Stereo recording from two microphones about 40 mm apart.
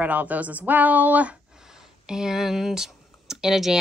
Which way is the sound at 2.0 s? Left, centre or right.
Centre.